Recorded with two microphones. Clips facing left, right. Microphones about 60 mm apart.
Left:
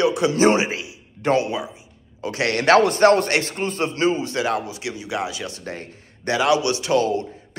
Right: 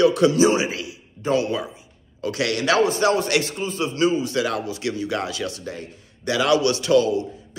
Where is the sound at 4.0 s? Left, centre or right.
Left.